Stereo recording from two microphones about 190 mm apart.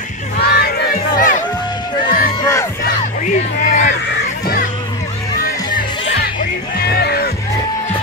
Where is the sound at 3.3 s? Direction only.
40° left (ahead or behind).